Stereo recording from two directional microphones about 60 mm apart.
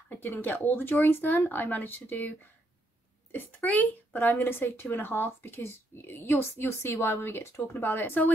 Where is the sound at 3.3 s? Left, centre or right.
Left.